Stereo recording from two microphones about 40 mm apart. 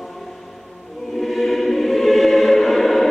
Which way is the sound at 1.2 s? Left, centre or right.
Centre.